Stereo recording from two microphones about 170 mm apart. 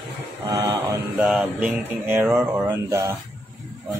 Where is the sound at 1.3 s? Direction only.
5° right (ahead or behind).